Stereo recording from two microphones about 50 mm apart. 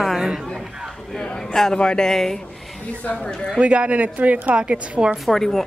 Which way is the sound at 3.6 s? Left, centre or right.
Right.